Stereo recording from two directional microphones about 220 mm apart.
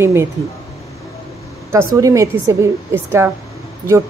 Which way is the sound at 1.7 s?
15° right (ahead or behind).